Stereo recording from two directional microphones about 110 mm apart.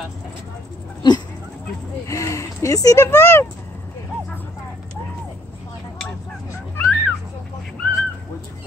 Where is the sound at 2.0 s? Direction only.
30° left (ahead or behind).